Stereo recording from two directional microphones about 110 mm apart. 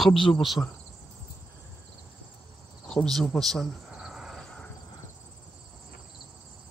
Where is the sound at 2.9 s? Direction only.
5° left (ahead or behind).